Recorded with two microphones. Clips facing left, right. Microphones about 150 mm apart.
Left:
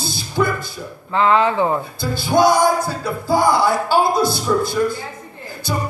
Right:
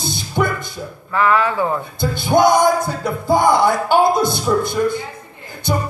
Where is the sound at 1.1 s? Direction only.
20° left (ahead or behind).